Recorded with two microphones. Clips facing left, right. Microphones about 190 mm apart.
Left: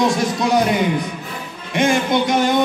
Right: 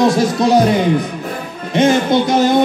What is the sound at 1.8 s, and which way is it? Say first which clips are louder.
Speech: right 4 dB; 35° right (ahead or behind).